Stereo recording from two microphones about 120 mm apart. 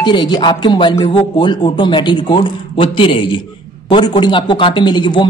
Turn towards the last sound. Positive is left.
turn(degrees=40)  # may be behind; listen again after turning